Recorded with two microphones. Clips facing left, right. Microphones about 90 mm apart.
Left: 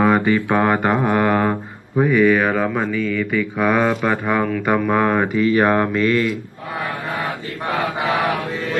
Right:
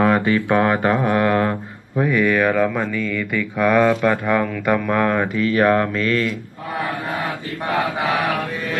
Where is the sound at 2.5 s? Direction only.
15° left (ahead or behind).